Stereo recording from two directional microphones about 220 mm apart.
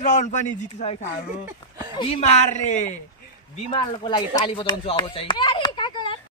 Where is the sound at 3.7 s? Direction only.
20° left (ahead or behind).